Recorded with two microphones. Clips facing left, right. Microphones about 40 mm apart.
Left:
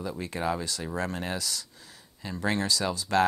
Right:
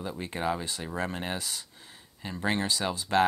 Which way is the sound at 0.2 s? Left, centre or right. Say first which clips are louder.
Even; right.